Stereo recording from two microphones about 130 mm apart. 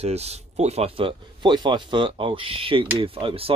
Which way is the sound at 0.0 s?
55° right (ahead or behind).